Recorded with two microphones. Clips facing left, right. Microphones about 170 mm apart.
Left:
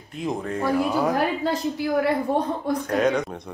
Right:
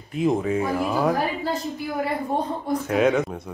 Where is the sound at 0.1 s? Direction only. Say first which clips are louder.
Right 6 dB; centre (ahead or behind).